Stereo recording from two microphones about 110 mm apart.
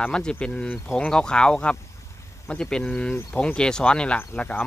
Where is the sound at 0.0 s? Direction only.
10° left (ahead or behind).